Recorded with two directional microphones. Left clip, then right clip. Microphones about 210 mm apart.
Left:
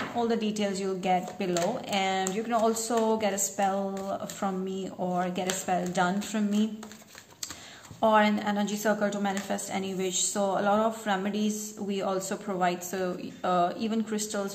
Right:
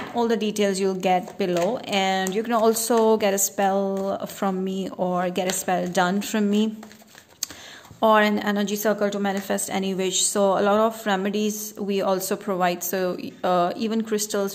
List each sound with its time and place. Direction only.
0.1 s a woman's voice: 45° right (ahead or behind)
8.0 s a woman's voice: 45° right (ahead or behind)